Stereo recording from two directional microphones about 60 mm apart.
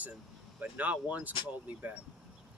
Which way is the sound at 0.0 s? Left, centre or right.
Right.